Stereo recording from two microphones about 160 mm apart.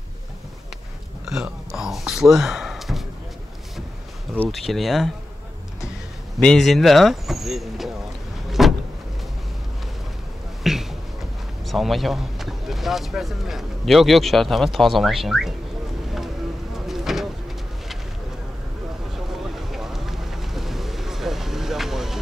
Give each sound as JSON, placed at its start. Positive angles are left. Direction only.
{"t": 1.2, "sound": "speech", "side_deg": -5}
{"t": 4.5, "sound": "speech", "side_deg": 0}
{"t": 6.4, "sound": "speech", "side_deg": 0}
{"t": 8.5, "sound": "vehicle", "side_deg": 0}
{"t": 10.6, "sound": "a sound", "side_deg": 0}
{"t": 11.6, "sound": "speech", "side_deg": 0}
{"t": 16.7, "sound": "vehicle", "side_deg": 0}
{"t": 19.5, "sound": "a sound", "side_deg": 0}